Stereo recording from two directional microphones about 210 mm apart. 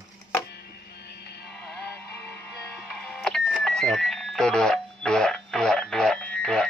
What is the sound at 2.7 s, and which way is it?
Music, centre (ahead or behind).